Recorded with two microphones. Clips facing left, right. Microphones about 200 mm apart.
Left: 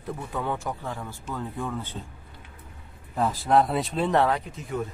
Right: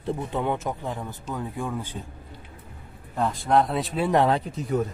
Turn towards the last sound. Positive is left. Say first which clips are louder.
# right 4 dB
turn(degrees=-30)  # may be behind; listen again after turning